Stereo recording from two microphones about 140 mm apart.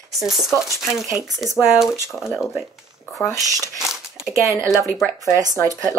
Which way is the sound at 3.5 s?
25° right (ahead or behind).